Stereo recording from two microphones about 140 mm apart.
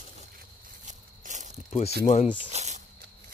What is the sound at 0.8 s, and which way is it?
Walk, 60° right (ahead or behind).